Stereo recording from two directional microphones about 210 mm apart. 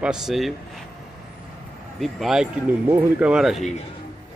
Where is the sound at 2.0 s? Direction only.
Centre (ahead or behind).